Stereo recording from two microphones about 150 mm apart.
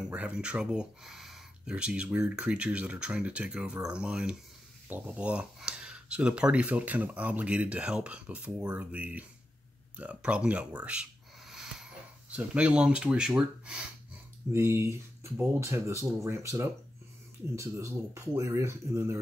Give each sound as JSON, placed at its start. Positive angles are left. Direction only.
{"t": 0.1, "sound": "speech", "side_deg": -10}